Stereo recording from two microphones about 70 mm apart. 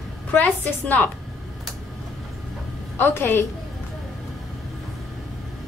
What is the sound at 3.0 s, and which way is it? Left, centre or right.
Speech, left.